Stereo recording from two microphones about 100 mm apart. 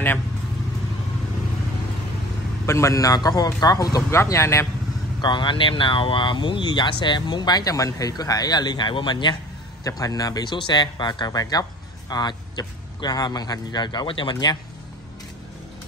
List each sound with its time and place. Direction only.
2.6 s a man's voice: 30° left (ahead or behind)
5.2 s speech: 50° left (ahead or behind)
9.8 s speech: 35° left (ahead or behind); by 14.3 s 55° left (ahead or behind)
14.3 s speech: 45° left (ahead or behind)